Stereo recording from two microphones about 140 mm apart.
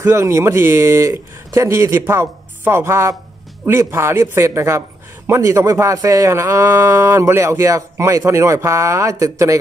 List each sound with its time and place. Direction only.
0.0 s speech: 20° right (ahead or behind)